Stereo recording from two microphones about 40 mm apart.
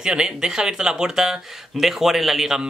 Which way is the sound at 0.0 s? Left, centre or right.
Right.